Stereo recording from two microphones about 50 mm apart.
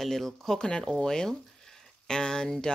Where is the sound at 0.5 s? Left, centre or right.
Centre.